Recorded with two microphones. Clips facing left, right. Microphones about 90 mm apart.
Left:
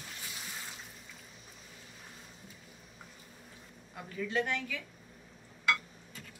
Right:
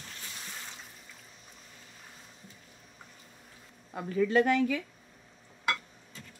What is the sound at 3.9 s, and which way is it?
Speech, 55° right (ahead or behind).